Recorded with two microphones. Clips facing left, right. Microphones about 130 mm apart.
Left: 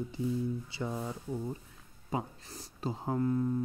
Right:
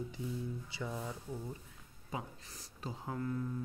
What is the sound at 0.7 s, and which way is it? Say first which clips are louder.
Speech: left 5 dB; 30° left (ahead or behind).